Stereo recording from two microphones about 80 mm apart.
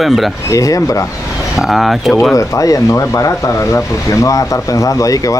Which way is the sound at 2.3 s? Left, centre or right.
Left.